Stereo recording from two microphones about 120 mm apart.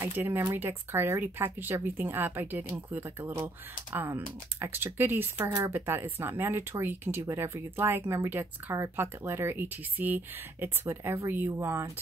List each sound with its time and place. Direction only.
0.0 s speech: 20° right (ahead or behind)